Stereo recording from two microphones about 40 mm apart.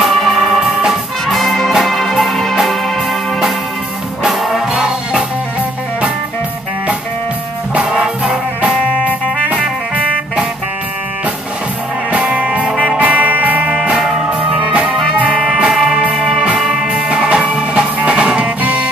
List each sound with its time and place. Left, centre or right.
0.0 s music: centre
4.3 s music: centre
7.9 s music: right
12.1 s music: right
13.7 s music: right
15.7 s music: centre
16.5 s music: centre
16.8 s music: right